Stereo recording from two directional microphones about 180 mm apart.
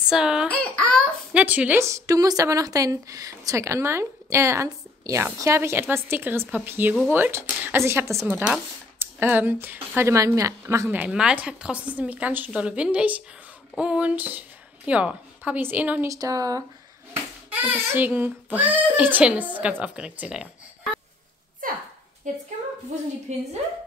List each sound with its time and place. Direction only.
0.1 s speech: 5° right (ahead or behind)
1.3 s a woman's voice: 10° right (ahead or behind)
21.6 s a sound: 50° right (ahead or behind)
22.3 s a woman's voice: 45° right (ahead or behind)